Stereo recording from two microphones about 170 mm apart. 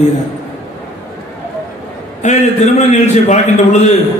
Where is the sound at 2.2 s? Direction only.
45° left (ahead or behind).